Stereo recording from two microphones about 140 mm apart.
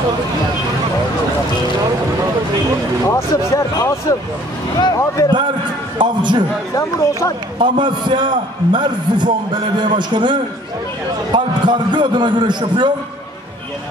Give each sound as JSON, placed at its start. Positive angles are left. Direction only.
{"t": 3.1, "sound": "speech", "side_deg": 20}
{"t": 5.9, "sound": "a man's voice", "side_deg": -35}
{"t": 6.7, "sound": "speech", "side_deg": 20}
{"t": 7.5, "sound": "a man's voice", "side_deg": -35}